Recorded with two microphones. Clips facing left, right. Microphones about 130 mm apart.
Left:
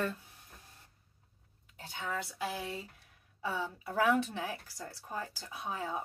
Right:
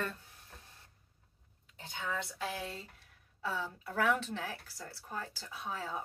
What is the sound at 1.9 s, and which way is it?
Speech, 5° left (ahead or behind).